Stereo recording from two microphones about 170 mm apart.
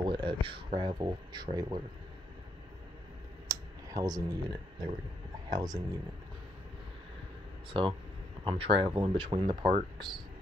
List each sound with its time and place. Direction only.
0.0 s speech: 30° right (ahead or behind)
3.4 s a sound: 20° right (ahead or behind)
5.6 s speech: 25° right (ahead or behind)
7.7 s speech: 30° right (ahead or behind)